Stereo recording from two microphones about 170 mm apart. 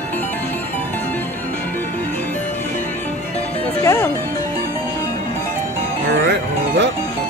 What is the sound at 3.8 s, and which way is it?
Music, 15° left (ahead or behind).